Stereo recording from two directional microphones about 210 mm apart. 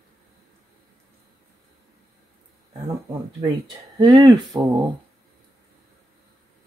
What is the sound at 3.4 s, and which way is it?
Speech, 20° right (ahead or behind).